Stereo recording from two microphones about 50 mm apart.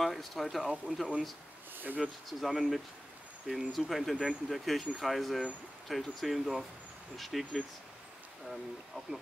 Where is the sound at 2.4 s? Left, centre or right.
Centre.